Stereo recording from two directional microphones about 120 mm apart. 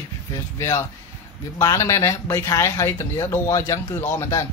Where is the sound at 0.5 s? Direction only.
25° left (ahead or behind).